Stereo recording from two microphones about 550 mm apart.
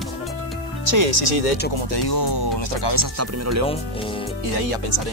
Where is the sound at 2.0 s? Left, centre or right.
Left.